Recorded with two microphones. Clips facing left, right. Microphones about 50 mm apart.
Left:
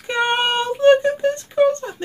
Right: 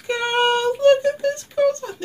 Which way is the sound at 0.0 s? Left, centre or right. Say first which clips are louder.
Even; left.